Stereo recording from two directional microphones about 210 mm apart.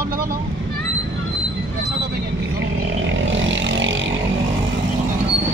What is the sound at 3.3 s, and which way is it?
Vehicle, 65° right (ahead or behind).